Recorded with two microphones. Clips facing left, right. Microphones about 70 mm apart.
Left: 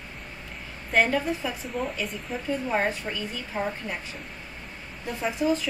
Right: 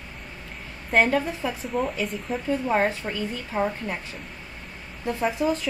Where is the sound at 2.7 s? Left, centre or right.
Centre.